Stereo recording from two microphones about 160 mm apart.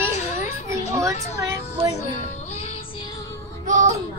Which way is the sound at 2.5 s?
40° left (ahead or behind).